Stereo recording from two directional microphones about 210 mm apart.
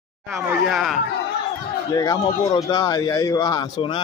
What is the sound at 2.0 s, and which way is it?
Speech, 20° left (ahead or behind).